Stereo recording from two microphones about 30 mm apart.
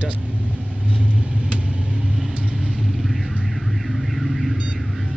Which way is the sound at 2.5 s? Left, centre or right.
Centre.